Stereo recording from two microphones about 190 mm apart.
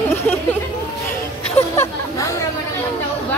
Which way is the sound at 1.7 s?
15° left (ahead or behind).